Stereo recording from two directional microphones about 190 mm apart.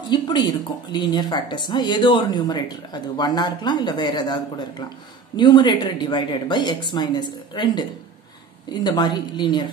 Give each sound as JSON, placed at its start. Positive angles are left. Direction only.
{"t": 0.1, "sound": "speech", "side_deg": 25}
{"t": 8.8, "sound": "speech", "side_deg": 20}